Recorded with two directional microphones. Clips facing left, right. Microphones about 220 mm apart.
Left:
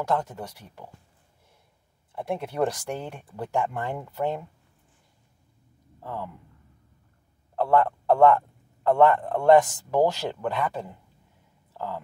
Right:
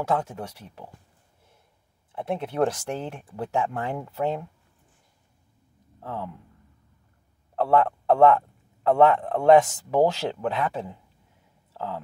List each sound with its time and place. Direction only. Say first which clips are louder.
0.0 s speech: right 1 dB; 5° right (ahead or behind)
2.4 s a man's voice: right 3 dB; centre (ahead or behind)
5.9 s speech: right 1 dB; centre (ahead or behind)
7.6 s a man's voice: right 1 dB; 5° right (ahead or behind)
11.7 s a sound: right 1 dB; centre (ahead or behind)